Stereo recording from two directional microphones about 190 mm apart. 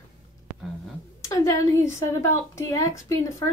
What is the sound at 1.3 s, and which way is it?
A woman's voice, 15° left (ahead or behind).